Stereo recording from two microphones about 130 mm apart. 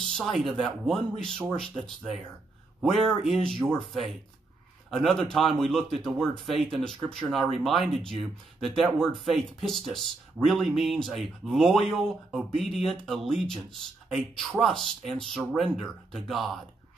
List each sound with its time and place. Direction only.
0.2 s speech: centre (ahead or behind)
2.8 s speech: centre (ahead or behind)